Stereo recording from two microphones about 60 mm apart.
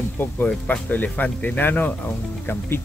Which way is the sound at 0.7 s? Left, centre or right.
Left.